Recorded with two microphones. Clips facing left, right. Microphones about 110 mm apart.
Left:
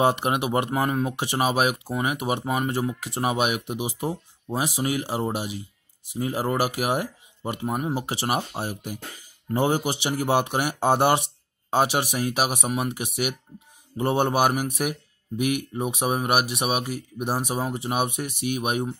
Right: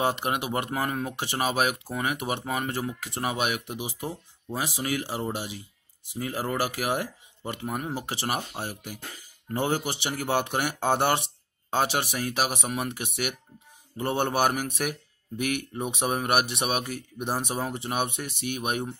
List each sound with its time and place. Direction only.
0.0 s speech: 20° left (ahead or behind)